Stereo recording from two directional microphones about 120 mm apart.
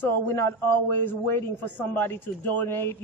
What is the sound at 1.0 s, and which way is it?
A man's voice, 15° left (ahead or behind).